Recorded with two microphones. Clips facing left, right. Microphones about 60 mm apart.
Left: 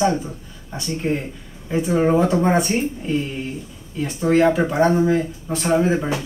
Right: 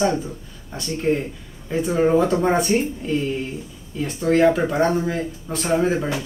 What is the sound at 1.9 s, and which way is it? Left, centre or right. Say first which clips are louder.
Speech: even; centre.